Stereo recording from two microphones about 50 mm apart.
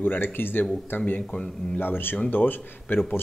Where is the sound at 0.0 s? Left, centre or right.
Left.